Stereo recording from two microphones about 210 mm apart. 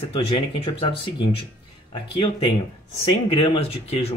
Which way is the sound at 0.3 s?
20° left (ahead or behind).